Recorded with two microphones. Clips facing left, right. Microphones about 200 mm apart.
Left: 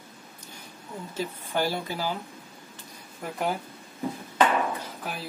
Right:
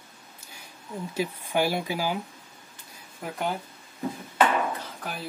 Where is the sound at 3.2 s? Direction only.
Centre (ahead or behind).